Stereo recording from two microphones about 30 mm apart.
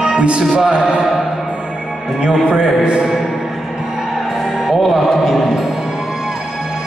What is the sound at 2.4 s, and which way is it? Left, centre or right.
Speech, right.